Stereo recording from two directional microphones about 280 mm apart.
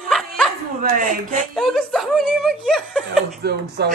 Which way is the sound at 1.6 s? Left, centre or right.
Centre.